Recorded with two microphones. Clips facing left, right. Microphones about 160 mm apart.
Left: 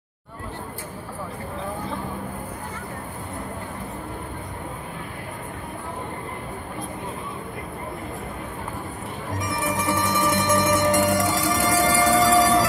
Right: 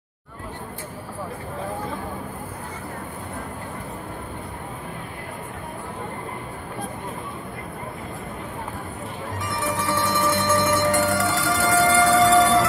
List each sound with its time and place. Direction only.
9.4 s music: 20° left (ahead or behind)